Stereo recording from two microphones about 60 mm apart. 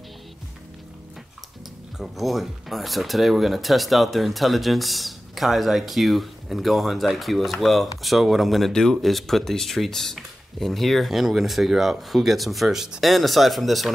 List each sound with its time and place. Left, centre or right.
2.0 s speech: centre